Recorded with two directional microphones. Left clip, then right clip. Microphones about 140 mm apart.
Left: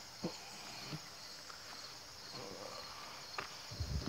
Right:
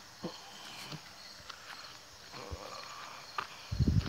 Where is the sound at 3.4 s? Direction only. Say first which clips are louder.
Right 6 dB; 40° right (ahead or behind).